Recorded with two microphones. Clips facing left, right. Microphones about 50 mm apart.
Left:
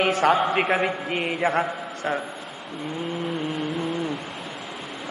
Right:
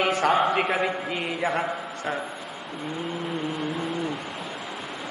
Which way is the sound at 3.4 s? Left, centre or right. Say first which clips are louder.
Left 2 dB; left.